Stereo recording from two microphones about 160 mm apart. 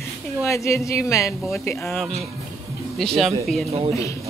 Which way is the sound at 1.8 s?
Centre (ahead or behind).